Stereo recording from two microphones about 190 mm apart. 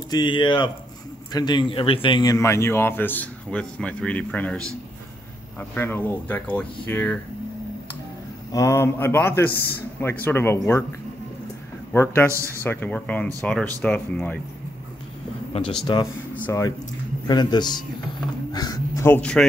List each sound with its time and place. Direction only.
0.1 s a man's voice: 25° left (ahead or behind)
8.5 s speech: 15° left (ahead or behind)
11.9 s speech: 10° left (ahead or behind)
15.9 s a man's voice: 25° left (ahead or behind); by 19.4 s 10° left (ahead or behind)